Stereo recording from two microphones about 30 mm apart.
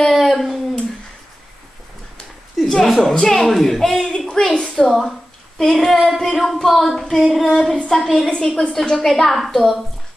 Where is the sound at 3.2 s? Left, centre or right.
Centre.